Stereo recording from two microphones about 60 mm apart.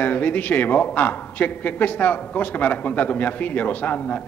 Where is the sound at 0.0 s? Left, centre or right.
Left.